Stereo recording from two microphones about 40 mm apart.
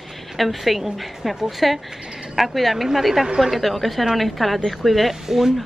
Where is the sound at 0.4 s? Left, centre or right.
Centre.